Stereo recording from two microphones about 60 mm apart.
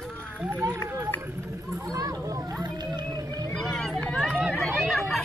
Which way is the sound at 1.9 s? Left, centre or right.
Right.